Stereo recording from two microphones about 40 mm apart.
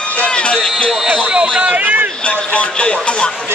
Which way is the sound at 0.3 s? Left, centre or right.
Left.